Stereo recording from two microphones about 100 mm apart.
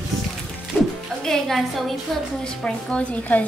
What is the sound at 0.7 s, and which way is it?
Music, 5° right (ahead or behind).